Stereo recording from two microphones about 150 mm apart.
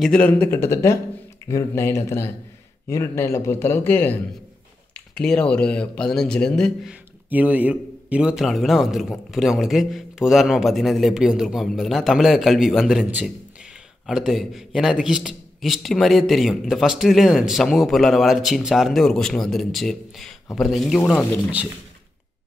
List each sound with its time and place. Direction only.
0.0 s a man's voice: 10° left (ahead or behind)
6.9 s a man's voice: 10° right (ahead or behind)